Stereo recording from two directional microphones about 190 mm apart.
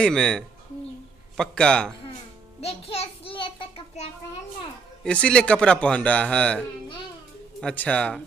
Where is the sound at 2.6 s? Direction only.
30° left (ahead or behind).